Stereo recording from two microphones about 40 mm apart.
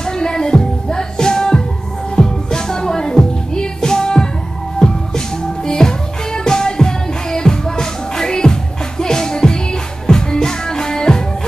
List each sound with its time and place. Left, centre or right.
0.0 s music: centre